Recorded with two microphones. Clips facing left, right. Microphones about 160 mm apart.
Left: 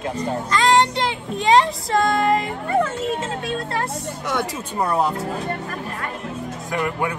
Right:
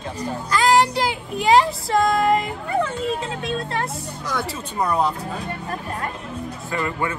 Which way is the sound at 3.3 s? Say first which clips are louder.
Even; 35° left (ahead or behind).